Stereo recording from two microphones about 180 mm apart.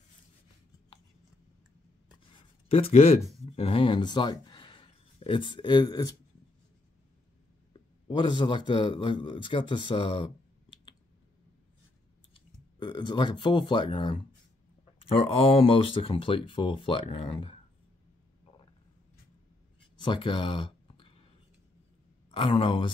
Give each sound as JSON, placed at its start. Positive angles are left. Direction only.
{"t": 2.7, "sound": "speech", "side_deg": 35}
{"t": 7.7, "sound": "a man's voice", "side_deg": 25}
{"t": 12.7, "sound": "speech", "side_deg": 25}
{"t": 15.3, "sound": "speech", "side_deg": 30}
{"t": 20.0, "sound": "speech", "side_deg": 25}
{"t": 22.3, "sound": "speech", "side_deg": 30}